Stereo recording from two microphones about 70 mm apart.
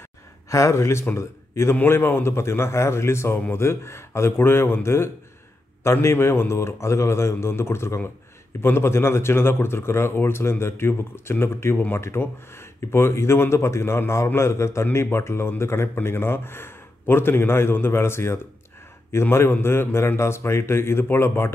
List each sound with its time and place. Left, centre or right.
0.5 s speech: left